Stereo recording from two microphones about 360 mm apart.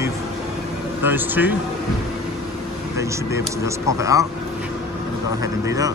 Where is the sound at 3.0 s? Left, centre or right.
Centre.